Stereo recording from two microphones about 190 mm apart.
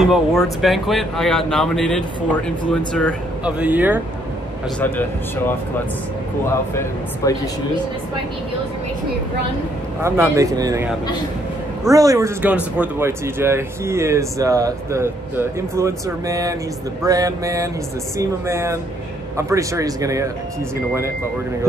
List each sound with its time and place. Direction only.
0.0 s speech: centre (ahead or behind)
3.4 s speech: 5° right (ahead or behind)
4.7 s speech: 10° left (ahead or behind)
6.7 s speech: 15° left (ahead or behind)
10.0 s speech: 15° right (ahead or behind)
11.9 s speech: 20° right (ahead or behind)